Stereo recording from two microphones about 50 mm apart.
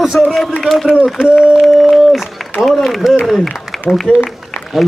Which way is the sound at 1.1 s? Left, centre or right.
Centre.